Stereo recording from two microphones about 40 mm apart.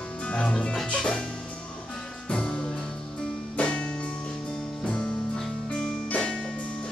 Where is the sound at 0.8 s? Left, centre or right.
Left.